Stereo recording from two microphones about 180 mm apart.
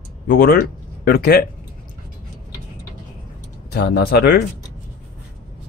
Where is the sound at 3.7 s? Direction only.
65° left (ahead or behind).